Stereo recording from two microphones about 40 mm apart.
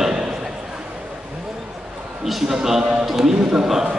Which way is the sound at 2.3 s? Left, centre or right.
Centre.